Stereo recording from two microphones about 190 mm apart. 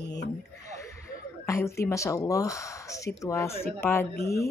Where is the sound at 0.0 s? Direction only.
65° left (ahead or behind).